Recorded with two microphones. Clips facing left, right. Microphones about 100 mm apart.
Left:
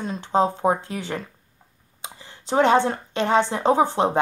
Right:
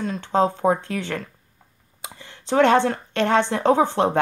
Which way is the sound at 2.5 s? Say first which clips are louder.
Right 1 dB; 15° left (ahead or behind).